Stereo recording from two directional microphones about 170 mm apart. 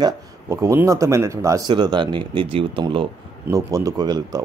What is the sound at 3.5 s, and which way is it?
Speech, 20° right (ahead or behind).